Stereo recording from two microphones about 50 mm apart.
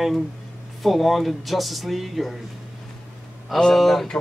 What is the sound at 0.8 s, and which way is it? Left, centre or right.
Speech, centre.